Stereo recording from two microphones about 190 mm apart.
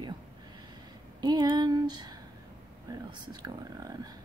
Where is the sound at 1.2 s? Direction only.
20° right (ahead or behind).